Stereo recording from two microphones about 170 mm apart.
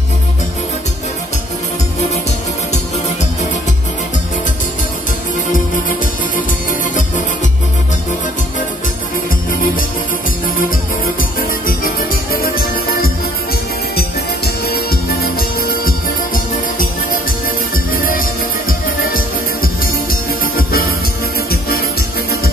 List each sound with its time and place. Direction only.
5.5 s music: 55° left (ahead or behind)
11.3 s music: 55° left (ahead or behind)